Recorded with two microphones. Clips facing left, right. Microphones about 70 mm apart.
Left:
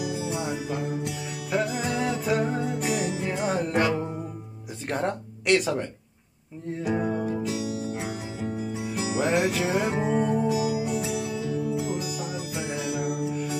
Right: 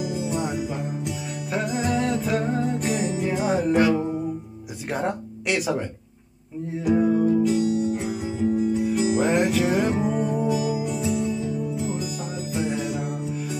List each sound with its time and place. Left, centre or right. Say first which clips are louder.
0.3 s music: right 3 dB; centre
4.8 s a sound: right 1 dB; centre
6.7 s music: right 6 dB; centre
11.2 s music: right 2 dB; left
12.0 s music: right 1 dB; centre